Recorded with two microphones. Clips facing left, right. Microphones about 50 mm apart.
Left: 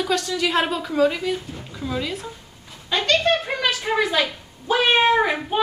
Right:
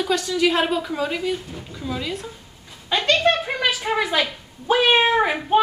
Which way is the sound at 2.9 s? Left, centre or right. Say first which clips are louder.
Right 1 dB; centre.